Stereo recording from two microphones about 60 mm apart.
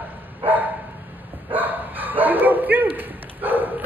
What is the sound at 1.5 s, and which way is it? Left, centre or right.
Bow-wow, right.